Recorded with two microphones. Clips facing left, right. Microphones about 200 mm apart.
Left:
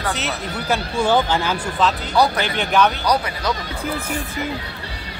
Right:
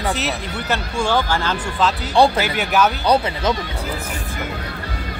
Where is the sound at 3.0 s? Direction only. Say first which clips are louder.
Right 3 dB; 25° right (ahead or behind).